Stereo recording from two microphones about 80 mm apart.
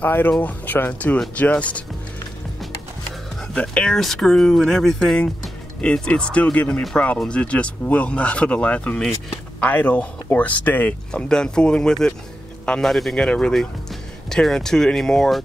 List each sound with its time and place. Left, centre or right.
0.0 s speech: left
3.5 s speech: centre
11.1 s speech: centre